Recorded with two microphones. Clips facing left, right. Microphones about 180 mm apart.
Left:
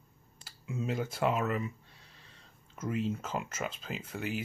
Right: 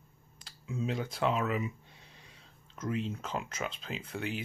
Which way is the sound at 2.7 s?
5° left (ahead or behind).